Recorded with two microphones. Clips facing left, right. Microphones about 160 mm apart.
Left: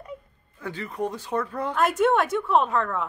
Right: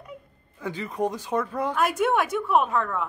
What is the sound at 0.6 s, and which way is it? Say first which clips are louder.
A woman's voice: right 2 dB; 15° right (ahead or behind).